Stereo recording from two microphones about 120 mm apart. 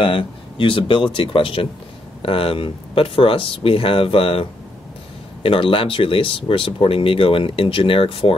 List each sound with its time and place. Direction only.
0.0 s speech: 45° left (ahead or behind)